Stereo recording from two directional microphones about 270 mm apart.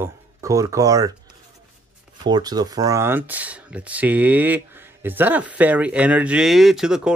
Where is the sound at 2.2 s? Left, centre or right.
Centre.